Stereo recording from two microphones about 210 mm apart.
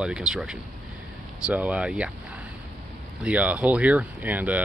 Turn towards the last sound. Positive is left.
turn(degrees=-5)  # may be behind; listen again after turning